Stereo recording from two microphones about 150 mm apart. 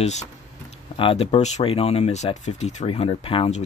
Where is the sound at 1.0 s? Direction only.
35° left (ahead or behind).